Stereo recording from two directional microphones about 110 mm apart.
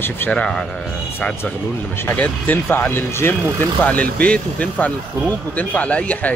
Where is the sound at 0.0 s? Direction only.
15° left (ahead or behind).